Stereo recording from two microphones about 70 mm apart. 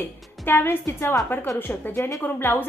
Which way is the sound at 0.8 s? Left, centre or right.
Left.